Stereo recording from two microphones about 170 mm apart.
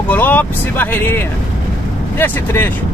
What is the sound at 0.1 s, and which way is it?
Speech, 10° left (ahead or behind).